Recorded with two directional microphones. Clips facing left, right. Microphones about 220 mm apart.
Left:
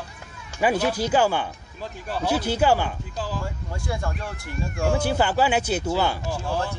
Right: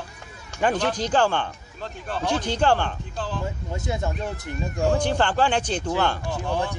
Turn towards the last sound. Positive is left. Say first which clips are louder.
# even
turn(degrees=10)  # may be behind; listen again after turning